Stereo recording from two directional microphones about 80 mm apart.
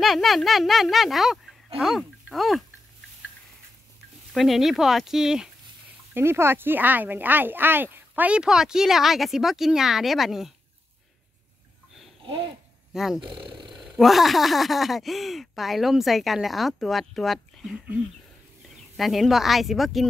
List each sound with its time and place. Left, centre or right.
0.0 s speech: centre
4.3 s speech: centre
6.1 s speech: right
8.4 s speech: centre
12.2 s a sound: right
12.9 s speech: centre
13.3 s speech: right
13.7 s speech: centre
18.9 s speech: centre